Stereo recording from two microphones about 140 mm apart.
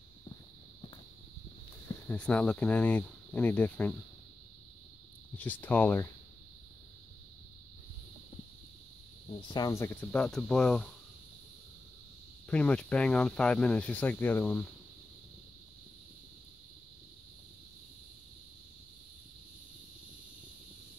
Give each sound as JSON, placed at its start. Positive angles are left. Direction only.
{"t": 2.0, "sound": "speech", "side_deg": 10}
{"t": 5.4, "sound": "speech", "side_deg": 10}
{"t": 9.3, "sound": "speech", "side_deg": 30}
{"t": 9.8, "sound": "cricket", "side_deg": 20}
{"t": 10.1, "sound": "cricket", "side_deg": 5}
{"t": 12.4, "sound": "speech", "side_deg": 10}